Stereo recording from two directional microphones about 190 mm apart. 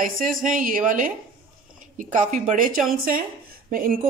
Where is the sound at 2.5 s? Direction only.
45° right (ahead or behind).